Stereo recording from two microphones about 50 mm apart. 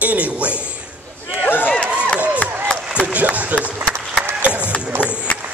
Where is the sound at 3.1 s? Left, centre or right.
Right.